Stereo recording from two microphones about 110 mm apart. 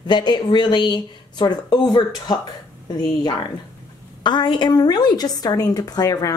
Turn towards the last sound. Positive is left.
turn(degrees=35)  # may be behind; listen again after turning